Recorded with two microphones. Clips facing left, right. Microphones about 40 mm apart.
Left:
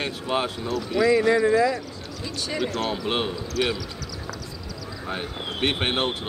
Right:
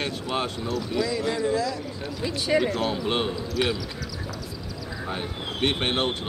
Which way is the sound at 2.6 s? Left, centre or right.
Centre.